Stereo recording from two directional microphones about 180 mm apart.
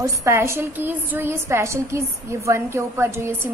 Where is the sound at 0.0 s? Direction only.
15° right (ahead or behind).